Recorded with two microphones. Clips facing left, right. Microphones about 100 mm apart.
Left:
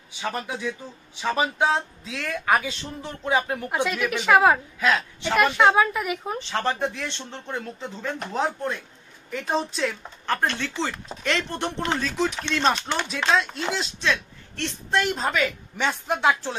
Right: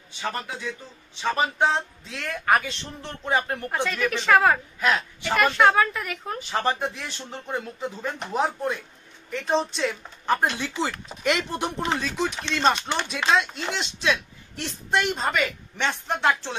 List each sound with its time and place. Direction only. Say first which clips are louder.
0.1 s a woman's voice: left 1 dB; 10° left (ahead or behind)
4.7 s speech: left 1 dB; 5° right (ahead or behind)
5.2 s a woman's voice: even; 15° left (ahead or behind)
6.5 s speech: right 1 dB; 5° right (ahead or behind)
10.2 s speech: right 2 dB; 10° right (ahead or behind)
14.0 s speech: right 2 dB; 10° right (ahead or behind)